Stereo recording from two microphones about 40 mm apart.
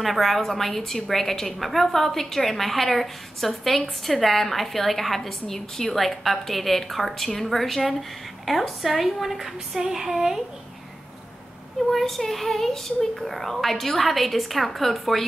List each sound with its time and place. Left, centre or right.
0.0 s a woman's voice: centre
11.9 s a woman's voice: centre